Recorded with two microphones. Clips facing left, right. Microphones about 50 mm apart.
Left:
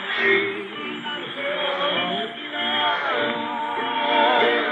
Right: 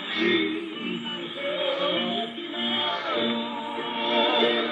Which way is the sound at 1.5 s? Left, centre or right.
Left.